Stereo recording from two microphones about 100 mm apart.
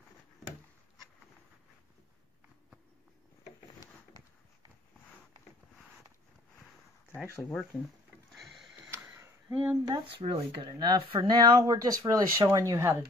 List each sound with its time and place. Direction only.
7.7 s speech: 10° right (ahead or behind)
9.5 s speech: 15° right (ahead or behind)
9.8 s speech: 50° right (ahead or behind)
10.6 s speech: 40° right (ahead or behind)